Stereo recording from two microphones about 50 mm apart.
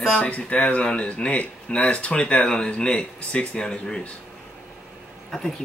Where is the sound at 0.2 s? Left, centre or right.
Left.